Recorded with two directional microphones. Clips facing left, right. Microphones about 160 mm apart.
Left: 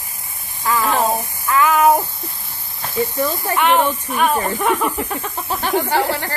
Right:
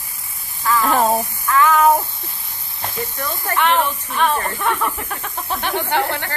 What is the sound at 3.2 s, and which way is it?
Speech, 10° left (ahead or behind).